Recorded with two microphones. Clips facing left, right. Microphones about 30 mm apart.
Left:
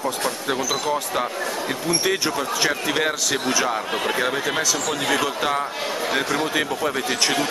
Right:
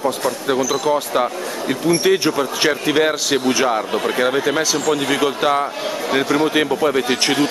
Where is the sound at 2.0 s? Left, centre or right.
Centre.